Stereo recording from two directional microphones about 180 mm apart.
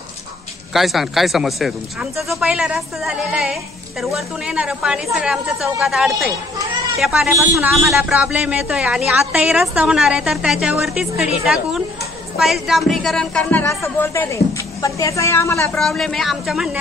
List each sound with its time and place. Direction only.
0.7 s a woman's voice: centre (ahead or behind); by 15.7 s 15° left (ahead or behind)
15.7 s a woman's voice: centre (ahead or behind)